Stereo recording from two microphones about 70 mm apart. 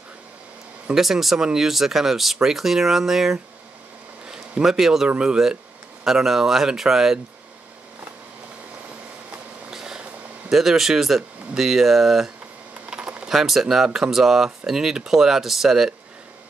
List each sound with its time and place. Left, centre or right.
0.9 s speech: centre
9.7 s a sound: centre
10.5 s speech: centre
12.9 s typing: centre
13.3 s speech: centre